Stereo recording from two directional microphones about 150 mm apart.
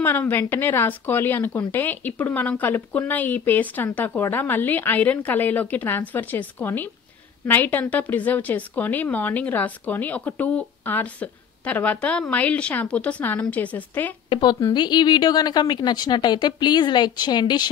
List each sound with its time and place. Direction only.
0.0 s a woman's voice: 15° left (ahead or behind)
14.3 s a woman's voice: 30° left (ahead or behind)